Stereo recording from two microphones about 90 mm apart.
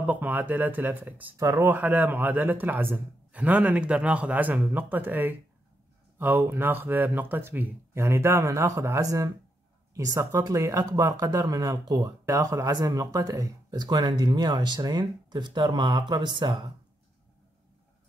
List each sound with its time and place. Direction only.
0.0 s a man's voice: 20° right (ahead or behind)
1.3 s speech: 35° right (ahead or behind)
1.7 s a man's voice: 20° right (ahead or behind); by 13.7 s 40° right (ahead or behind)
13.7 s speech: 50° right (ahead or behind)